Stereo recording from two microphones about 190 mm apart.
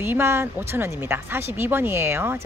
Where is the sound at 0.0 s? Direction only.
10° right (ahead or behind).